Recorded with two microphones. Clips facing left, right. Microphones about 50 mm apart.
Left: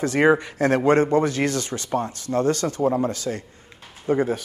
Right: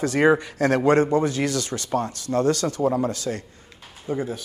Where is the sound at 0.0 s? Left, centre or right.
Left.